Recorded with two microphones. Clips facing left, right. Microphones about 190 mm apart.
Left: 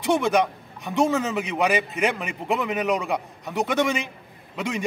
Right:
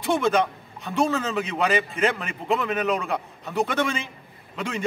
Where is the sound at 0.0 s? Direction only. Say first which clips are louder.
Left 1 dB; 15° left (ahead or behind).